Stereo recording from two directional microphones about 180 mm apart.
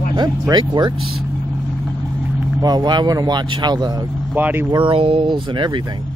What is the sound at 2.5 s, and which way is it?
Speech, 20° right (ahead or behind).